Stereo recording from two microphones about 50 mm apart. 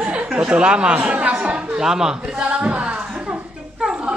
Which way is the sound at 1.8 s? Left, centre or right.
Centre.